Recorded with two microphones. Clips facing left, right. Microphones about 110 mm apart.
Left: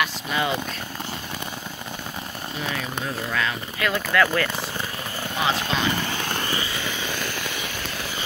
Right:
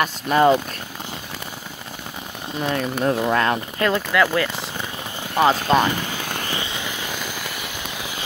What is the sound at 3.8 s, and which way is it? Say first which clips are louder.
Speech: right 2 dB; 20° right (ahead or behind).